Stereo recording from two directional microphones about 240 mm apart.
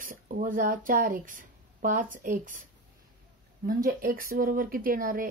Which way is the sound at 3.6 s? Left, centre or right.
Right.